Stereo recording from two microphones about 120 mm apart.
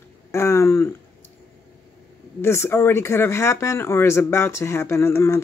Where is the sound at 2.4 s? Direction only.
20° left (ahead or behind).